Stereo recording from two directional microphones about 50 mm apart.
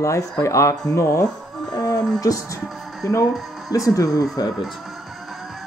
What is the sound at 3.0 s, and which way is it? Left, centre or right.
Speech, left.